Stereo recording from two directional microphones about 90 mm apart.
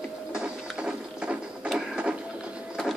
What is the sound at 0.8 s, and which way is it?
Printer, 10° right (ahead or behind).